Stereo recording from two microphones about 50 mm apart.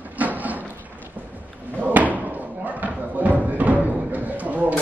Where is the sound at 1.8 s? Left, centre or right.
Right.